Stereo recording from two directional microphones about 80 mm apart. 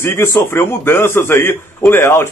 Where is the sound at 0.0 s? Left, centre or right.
Left.